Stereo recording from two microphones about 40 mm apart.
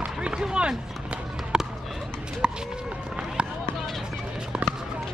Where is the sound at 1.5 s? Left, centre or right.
Right.